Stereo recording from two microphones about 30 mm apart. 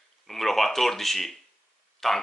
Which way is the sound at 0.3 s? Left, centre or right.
Centre.